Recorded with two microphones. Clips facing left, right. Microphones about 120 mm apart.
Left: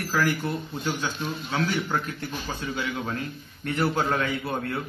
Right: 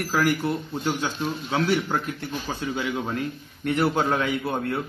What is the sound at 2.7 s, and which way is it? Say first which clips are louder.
A man's voice: right 2 dB; 20° right (ahead or behind).